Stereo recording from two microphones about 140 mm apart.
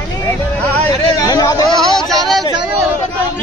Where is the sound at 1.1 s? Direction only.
25° left (ahead or behind).